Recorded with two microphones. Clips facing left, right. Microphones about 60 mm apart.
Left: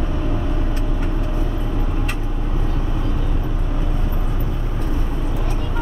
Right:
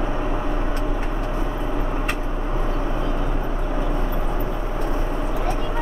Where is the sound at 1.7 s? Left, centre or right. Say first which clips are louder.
Right 1 dB; right.